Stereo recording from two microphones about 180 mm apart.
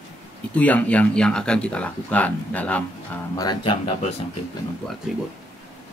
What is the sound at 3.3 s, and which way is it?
Speech, 25° left (ahead or behind).